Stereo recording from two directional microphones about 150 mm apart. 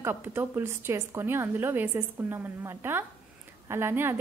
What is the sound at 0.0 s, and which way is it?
A woman's voice, 15° right (ahead or behind).